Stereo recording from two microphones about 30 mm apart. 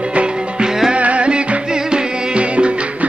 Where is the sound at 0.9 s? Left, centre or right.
Right.